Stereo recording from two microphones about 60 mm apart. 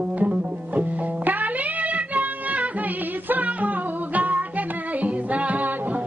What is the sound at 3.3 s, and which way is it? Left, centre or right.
Music, right.